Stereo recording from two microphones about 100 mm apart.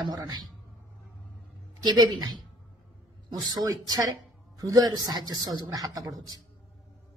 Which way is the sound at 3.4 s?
40° right (ahead or behind).